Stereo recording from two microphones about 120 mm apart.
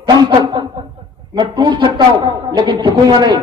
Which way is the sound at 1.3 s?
40° right (ahead or behind).